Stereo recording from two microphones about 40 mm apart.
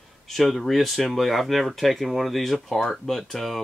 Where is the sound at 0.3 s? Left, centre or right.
Centre.